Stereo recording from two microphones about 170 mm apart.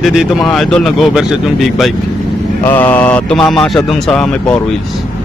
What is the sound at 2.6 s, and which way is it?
Speech, 10° left (ahead or behind).